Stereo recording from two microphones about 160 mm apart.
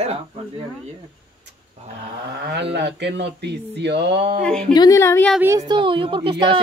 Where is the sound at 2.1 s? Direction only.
90° right.